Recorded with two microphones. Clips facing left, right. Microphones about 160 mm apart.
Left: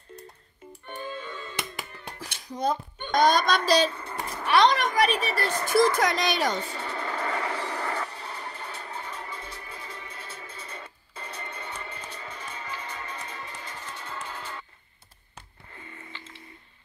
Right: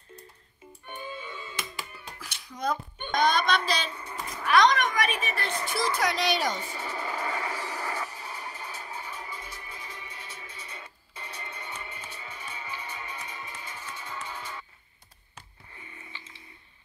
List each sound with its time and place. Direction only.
0.8 s music: 10° right (ahead or behind)
2.2 s a sound: 45° left (ahead or behind)
2.5 s speech: 30° left (ahead or behind); by 6.6 s 55° left (ahead or behind)
6.6 s music: 10° right (ahead or behind)
11.9 s music: 10° right (ahead or behind)
16.1 s telephone dialing: 15° right (ahead or behind)